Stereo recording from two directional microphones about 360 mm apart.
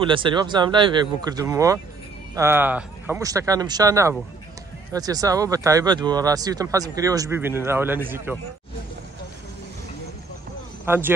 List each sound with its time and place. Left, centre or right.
0.0 s speech: centre
10.9 s speech: centre